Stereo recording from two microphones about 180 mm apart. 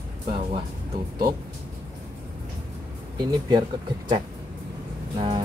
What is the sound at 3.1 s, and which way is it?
Speech, 25° right (ahead or behind).